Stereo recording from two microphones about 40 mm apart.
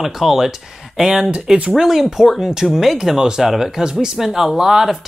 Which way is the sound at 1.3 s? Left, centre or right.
Right.